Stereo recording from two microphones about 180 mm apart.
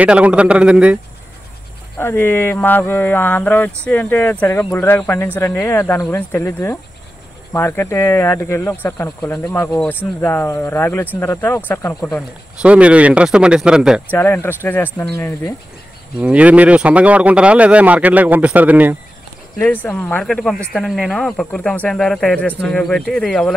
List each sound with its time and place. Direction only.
0.0 s speech: 5° right (ahead or behind)
2.0 s speech: 10° left (ahead or behind)
12.6 s speech: 5° right (ahead or behind)
14.1 s speech: 10° left (ahead or behind)
16.2 s speech: 5° right (ahead or behind)
19.6 s speech: 10° left (ahead or behind)